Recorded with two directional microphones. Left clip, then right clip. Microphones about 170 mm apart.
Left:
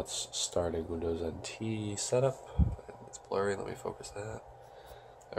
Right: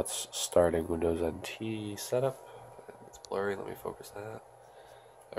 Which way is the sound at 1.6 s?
5° right (ahead or behind).